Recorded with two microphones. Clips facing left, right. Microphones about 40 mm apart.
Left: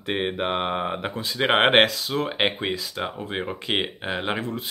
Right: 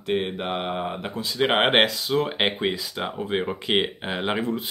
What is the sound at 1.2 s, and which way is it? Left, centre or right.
Speech, centre.